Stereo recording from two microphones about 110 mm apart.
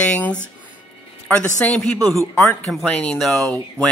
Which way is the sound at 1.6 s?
10° left (ahead or behind).